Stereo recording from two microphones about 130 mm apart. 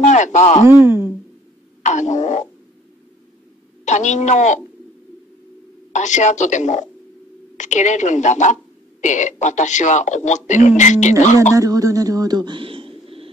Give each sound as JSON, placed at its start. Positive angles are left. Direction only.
{"t": 0.0, "sound": "speech", "side_deg": 65}
{"t": 0.7, "sound": "speech", "side_deg": -15}
{"t": 1.8, "sound": "speech", "side_deg": 65}
{"t": 3.8, "sound": "speech", "side_deg": 65}
{"t": 5.9, "sound": "speech", "side_deg": 70}
{"t": 11.5, "sound": "speech", "side_deg": -25}